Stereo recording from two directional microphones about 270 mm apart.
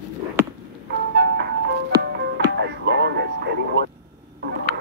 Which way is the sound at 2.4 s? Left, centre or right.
Right.